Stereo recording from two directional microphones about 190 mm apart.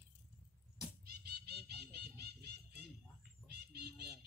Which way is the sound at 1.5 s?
55° right (ahead or behind).